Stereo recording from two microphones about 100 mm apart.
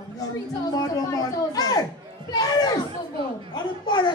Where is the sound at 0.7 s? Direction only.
35° left (ahead or behind); by 4.0 s 50° left (ahead or behind).